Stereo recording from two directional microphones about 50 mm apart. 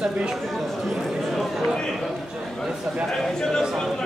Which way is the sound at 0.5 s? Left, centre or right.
Centre.